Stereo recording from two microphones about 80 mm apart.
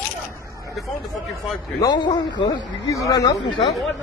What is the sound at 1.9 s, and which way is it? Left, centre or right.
Speech, left.